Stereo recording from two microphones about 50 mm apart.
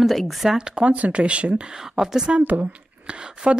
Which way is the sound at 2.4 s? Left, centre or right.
Right.